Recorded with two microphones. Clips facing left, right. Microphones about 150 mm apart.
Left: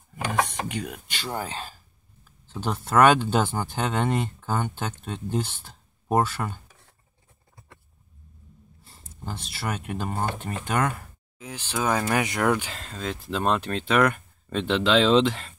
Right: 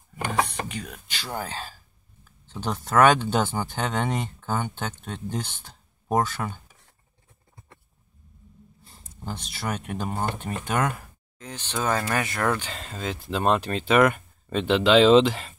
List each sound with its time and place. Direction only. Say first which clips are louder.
1.2 s speech: left 1 dB; centre (ahead or behind)
8.8 s speech: right 1 dB; 5° left (ahead or behind)
11.3 s speech: left 1 dB; 10° left (ahead or behind)
12.7 s speech: even; centre (ahead or behind)